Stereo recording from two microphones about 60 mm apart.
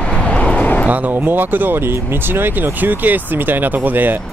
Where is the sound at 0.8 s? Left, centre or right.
Right.